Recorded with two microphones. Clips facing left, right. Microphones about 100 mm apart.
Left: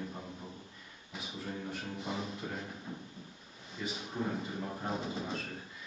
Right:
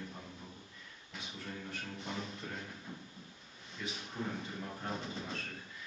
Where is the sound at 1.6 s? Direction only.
5° left (ahead or behind).